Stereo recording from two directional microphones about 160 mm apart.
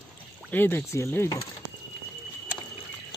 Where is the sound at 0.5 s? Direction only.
15° left (ahead or behind).